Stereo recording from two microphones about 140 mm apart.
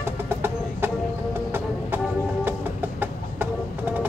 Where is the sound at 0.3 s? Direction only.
15° right (ahead or behind).